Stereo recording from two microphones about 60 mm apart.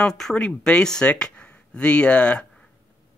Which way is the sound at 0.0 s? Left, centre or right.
Centre.